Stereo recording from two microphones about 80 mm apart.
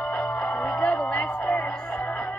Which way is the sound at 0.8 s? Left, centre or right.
Centre.